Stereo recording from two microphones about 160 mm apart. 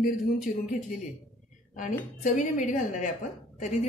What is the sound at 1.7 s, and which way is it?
Speech, 55° left (ahead or behind).